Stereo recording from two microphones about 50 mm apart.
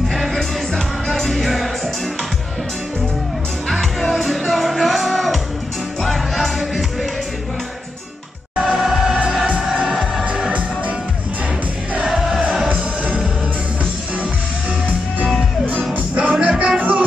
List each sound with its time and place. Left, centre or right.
0.1 s music: centre
3.6 s music: centre
8.5 s music: centre
11.9 s music: centre
12.6 s music: right
15.9 s music: right